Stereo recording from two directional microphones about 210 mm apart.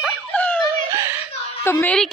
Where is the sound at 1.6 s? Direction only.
10° left (ahead or behind).